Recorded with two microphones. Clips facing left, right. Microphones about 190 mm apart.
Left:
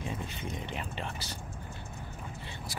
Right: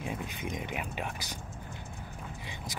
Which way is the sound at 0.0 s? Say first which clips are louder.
Right 1 dB; 10° right (ahead or behind).